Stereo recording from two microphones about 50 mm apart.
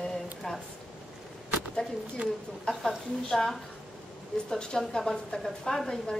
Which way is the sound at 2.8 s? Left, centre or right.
Centre.